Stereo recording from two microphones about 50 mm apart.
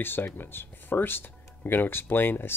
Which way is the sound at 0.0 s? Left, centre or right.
Left.